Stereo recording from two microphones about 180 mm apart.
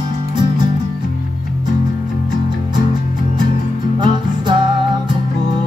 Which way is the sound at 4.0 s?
25° right (ahead or behind).